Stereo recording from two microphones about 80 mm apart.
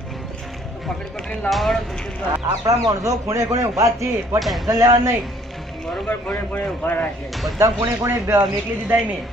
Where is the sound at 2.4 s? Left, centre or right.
Right.